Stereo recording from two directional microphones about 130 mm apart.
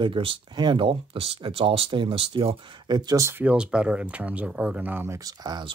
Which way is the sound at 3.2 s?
20° right (ahead or behind).